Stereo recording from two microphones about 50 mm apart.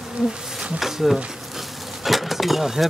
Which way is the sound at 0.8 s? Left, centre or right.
Centre.